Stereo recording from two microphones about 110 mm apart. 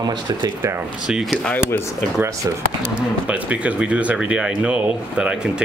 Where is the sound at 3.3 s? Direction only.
10° right (ahead or behind).